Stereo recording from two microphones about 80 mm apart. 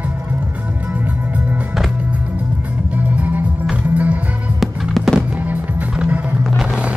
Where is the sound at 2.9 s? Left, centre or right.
Centre.